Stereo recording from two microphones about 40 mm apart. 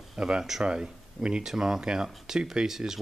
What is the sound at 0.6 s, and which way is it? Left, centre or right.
Speech, right.